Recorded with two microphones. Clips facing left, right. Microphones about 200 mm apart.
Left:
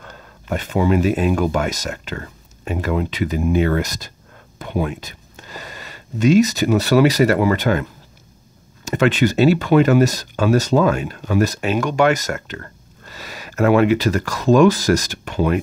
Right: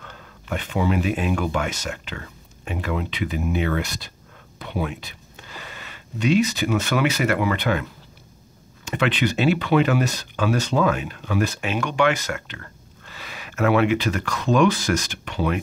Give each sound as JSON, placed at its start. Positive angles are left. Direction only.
{"t": 0.0, "sound": "speech", "side_deg": 40}
{"t": 8.8, "sound": "speech", "side_deg": 40}